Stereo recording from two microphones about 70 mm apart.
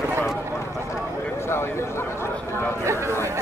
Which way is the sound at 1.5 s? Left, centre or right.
Left.